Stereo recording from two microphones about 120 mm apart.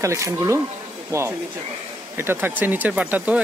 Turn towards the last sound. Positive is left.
turn(degrees=-10)  # may be behind; listen again after turning